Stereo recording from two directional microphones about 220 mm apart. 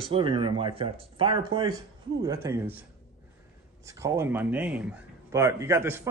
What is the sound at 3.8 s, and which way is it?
A man's voice, 15° right (ahead or behind).